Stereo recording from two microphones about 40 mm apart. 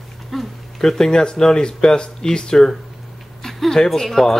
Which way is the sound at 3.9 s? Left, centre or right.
Centre.